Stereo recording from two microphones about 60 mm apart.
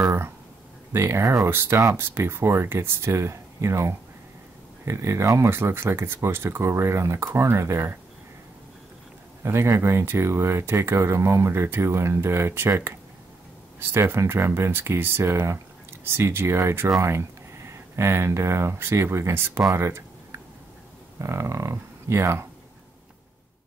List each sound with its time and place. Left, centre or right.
0.9 s speech: right
5.6 s speech: right
9.4 s speech: right
19.7 s a sound: right
21.2 s speech: right